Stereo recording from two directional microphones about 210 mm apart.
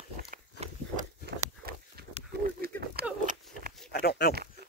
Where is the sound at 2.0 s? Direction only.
45° right (ahead or behind).